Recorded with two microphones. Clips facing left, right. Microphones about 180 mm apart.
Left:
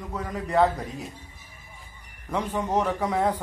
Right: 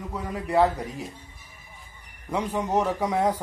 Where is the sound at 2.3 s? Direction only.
10° right (ahead or behind).